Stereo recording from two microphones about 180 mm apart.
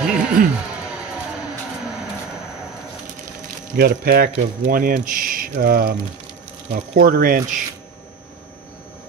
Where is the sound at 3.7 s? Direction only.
60° right (ahead or behind).